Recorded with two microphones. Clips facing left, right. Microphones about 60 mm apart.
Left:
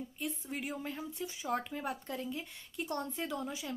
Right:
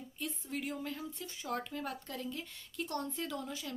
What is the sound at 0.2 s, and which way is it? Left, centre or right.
Speech, centre.